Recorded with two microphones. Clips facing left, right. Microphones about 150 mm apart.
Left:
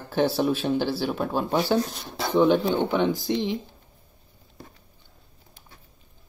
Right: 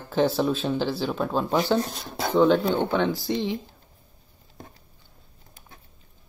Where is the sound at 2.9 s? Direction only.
15° left (ahead or behind).